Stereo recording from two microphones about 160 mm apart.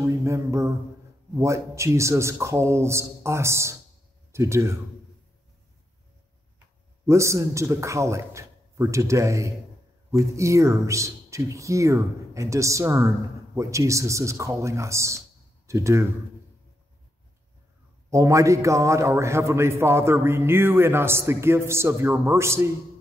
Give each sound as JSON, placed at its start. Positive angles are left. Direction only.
{"t": 0.0, "sound": "mantra", "side_deg": -20}
{"t": 1.4, "sound": "a man's voice", "side_deg": -20}
{"t": 7.1, "sound": "a man's voice", "side_deg": -20}
{"t": 18.1, "sound": "a man's voice", "side_deg": -20}